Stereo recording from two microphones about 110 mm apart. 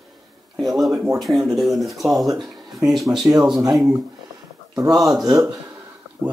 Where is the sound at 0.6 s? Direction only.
Centre (ahead or behind).